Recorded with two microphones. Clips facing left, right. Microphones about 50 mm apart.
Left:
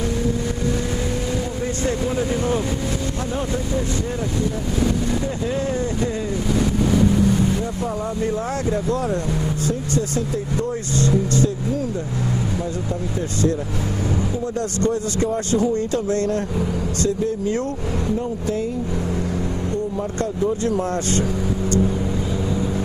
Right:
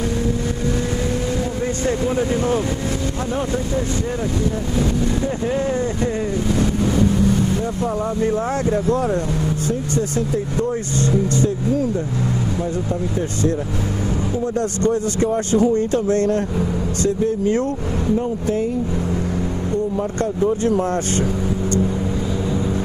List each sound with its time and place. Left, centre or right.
1.9 s speech: centre
8.3 s speech: centre
14.8 s speech: right
20.6 s speech: right